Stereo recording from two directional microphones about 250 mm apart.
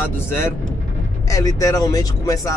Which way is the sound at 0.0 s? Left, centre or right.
Centre.